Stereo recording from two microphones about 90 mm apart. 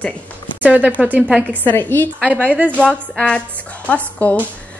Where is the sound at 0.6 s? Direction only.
15° right (ahead or behind).